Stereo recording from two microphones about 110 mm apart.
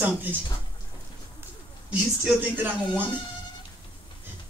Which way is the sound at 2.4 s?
20° right (ahead or behind).